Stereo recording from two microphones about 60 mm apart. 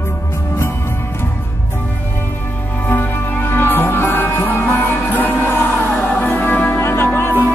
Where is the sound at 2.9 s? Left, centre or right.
Left.